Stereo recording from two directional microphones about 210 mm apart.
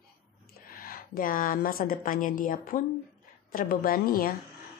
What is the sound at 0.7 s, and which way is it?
A woman's voice, 45° left (ahead or behind).